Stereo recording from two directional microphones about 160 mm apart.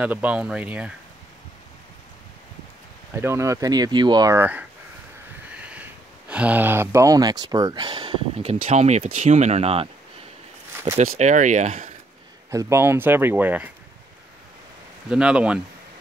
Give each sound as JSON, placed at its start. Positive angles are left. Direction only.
{"t": 0.0, "sound": "speech", "side_deg": -10}
{"t": 3.2, "sound": "speech", "side_deg": -15}
{"t": 8.4, "sound": "speech", "side_deg": -45}
{"t": 11.1, "sound": "speech", "side_deg": -50}
{"t": 12.4, "sound": "speech", "side_deg": -15}
{"t": 15.0, "sound": "speech", "side_deg": -5}